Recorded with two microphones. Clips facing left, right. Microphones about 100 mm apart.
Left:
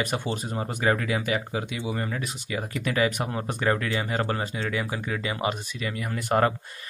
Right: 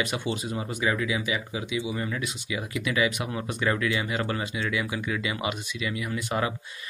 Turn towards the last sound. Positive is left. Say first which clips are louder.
# left 5 dB
turn(degrees=50)  # may be behind; listen again after turning